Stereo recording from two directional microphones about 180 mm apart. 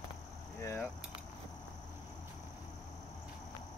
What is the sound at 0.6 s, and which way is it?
Keys jangling, 15° left (ahead or behind).